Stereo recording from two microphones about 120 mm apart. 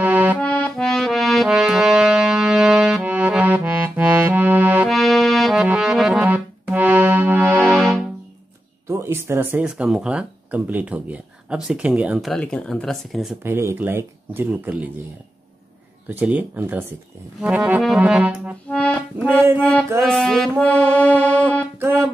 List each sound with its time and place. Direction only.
0.0 s accordion: 15° right (ahead or behind)
0.4 s music: 10° left (ahead or behind); by 4.8 s 15° right (ahead or behind)
4.8 s music: centre (ahead or behind); by 7.7 s 15° right (ahead or behind)
7.7 s music: 5° left (ahead or behind)
8.8 s speech: 20° right (ahead or behind)
12.3 s speech: 5° left (ahead or behind)
13.4 s speech: 20° right (ahead or behind)
16.1 s speech: 15° right (ahead or behind)
18.7 s accordion: 10° left (ahead or behind)
19.1 s speech: 15° right (ahead or behind)
19.6 s music: 10° left (ahead or behind)